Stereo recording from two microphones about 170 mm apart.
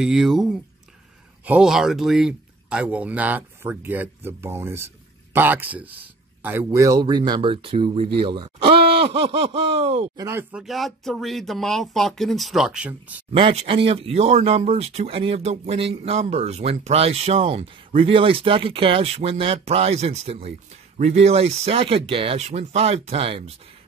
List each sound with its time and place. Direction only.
0.0 s speech: centre (ahead or behind); by 10.0 s 35° right (ahead or behind)
10.1 s speech: 15° right (ahead or behind)
10.5 s speech: centre (ahead or behind)
13.3 s speech: 35° right (ahead or behind)